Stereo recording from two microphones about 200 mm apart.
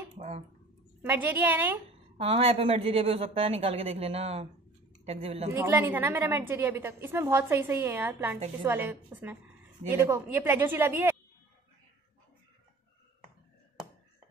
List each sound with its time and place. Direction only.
1.0 s a woman's voice: 10° right (ahead or behind)
2.1 s a woman's voice: 30° right (ahead or behind)
5.5 s a woman's voice: 10° right (ahead or behind)